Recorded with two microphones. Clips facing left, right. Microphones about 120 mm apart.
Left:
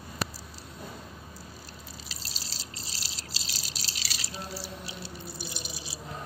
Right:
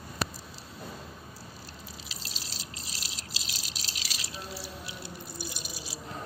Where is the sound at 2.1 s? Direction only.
35° left (ahead or behind).